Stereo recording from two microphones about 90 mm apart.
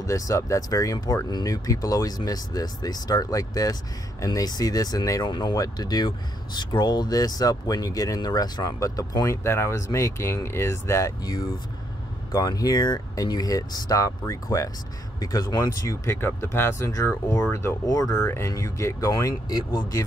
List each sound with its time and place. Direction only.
0.0 s speech: 40° left (ahead or behind)
5.2 s speech: 55° left (ahead or behind); by 16.2 s 40° left (ahead or behind)
16.2 s speech: 25° left (ahead or behind)
17.8 s speech: 40° left (ahead or behind)